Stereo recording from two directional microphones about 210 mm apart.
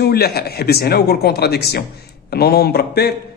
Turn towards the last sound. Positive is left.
turn(degrees=50)  # may be behind; listen again after turning